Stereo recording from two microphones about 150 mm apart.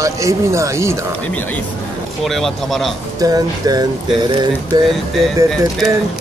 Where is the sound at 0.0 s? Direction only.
20° right (ahead or behind).